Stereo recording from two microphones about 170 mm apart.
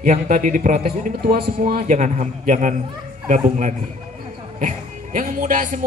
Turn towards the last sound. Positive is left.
turn(degrees=-50)  # may be behind; listen again after turning